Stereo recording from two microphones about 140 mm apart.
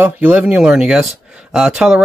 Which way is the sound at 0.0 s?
10° right (ahead or behind).